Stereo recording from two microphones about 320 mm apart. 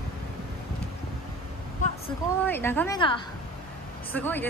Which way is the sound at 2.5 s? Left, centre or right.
Centre.